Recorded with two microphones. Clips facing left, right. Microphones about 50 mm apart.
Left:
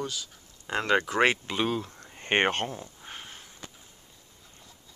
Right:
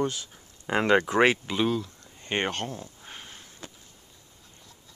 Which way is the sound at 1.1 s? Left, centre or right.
Centre.